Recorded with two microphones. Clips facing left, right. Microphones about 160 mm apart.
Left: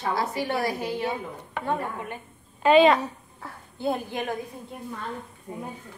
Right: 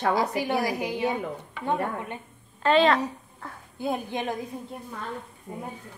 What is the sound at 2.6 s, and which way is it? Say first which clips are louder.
Speech: left 3 dB; 15° left (ahead or behind).